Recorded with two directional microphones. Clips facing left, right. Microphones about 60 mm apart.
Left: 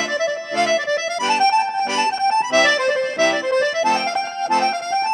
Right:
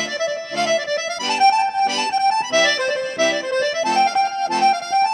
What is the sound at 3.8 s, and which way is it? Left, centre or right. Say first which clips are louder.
Accordion: right 2 dB; left.